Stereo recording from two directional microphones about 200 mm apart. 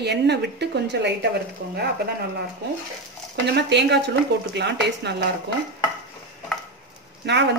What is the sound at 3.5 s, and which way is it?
A woman's voice, 60° right (ahead or behind).